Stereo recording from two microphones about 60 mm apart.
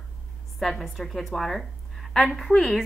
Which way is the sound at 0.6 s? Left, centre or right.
Centre.